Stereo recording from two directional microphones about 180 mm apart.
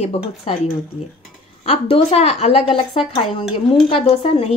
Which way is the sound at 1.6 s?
35° left (ahead or behind).